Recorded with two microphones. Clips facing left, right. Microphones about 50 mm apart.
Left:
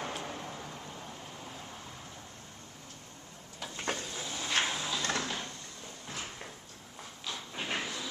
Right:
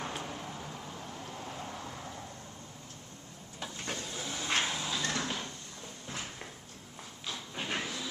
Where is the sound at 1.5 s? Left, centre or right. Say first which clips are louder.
Right 4 dB; centre.